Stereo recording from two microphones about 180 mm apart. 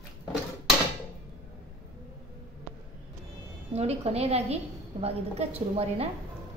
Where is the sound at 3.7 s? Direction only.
35° right (ahead or behind).